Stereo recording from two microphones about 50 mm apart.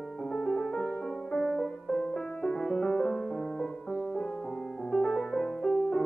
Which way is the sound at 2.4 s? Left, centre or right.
Centre.